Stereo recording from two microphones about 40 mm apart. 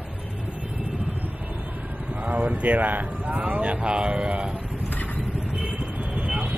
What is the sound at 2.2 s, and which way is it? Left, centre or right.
Speech, right.